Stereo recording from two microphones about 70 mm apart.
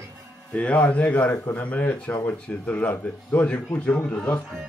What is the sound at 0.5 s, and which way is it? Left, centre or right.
A man's voice, left.